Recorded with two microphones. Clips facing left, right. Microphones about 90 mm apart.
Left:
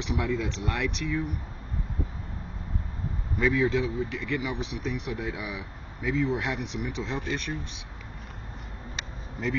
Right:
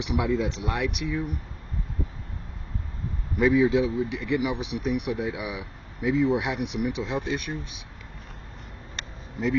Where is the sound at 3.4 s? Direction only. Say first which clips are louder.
Right 4 dB; 15° right (ahead or behind).